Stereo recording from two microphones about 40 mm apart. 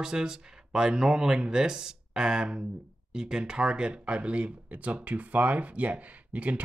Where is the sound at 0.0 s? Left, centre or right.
Centre.